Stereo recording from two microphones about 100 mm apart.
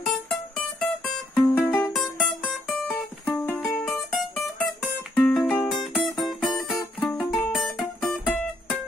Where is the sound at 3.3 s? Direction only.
20° left (ahead or behind).